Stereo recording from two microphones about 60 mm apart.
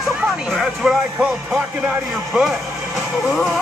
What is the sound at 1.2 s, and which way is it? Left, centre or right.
Speech, centre.